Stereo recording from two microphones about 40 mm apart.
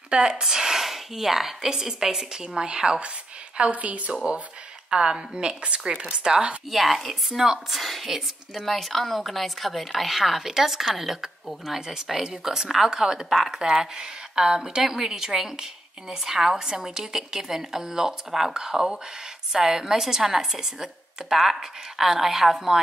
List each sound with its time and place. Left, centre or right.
0.1 s a woman's voice: right
3.5 s a woman's voice: right
4.1 s a woman's voice: right
6.7 s a woman's voice: centre